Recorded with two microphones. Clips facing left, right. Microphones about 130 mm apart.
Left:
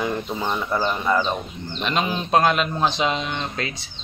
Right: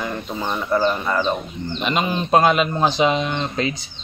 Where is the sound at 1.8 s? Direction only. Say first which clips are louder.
Right 2 dB; centre (ahead or behind).